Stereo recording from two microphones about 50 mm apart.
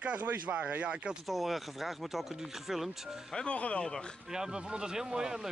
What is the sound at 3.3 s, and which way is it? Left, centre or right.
Speech, left.